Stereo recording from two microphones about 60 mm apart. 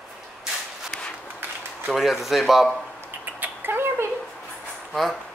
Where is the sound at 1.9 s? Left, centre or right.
Centre.